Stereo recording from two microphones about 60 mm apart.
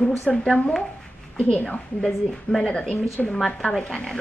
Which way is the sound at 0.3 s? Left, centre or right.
Centre.